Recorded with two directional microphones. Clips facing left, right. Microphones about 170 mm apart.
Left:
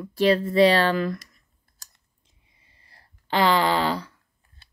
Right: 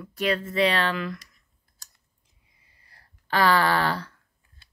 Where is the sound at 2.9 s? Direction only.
20° left (ahead or behind).